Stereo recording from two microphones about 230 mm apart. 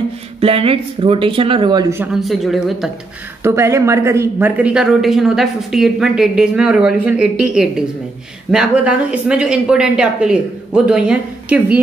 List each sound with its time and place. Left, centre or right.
0.4 s speech: right
2.1 s speech: centre
3.4 s speech: centre